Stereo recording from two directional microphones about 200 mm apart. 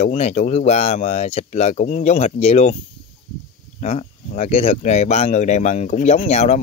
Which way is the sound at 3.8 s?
35° left (ahead or behind).